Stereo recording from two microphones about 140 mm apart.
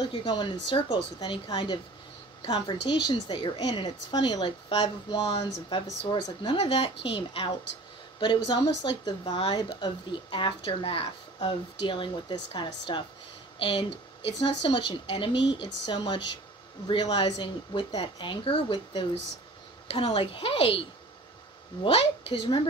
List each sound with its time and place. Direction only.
0.0 s speech: 35° left (ahead or behind)
20.1 s speech: 40° left (ahead or behind)
21.8 s speech: 40° left (ahead or behind)